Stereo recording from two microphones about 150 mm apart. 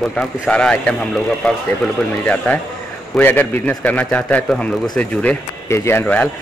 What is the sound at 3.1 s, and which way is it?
A man's voice, 10° left (ahead or behind).